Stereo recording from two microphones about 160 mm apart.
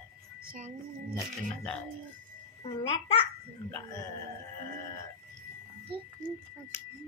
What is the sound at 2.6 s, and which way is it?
Speech, 35° left (ahead or behind).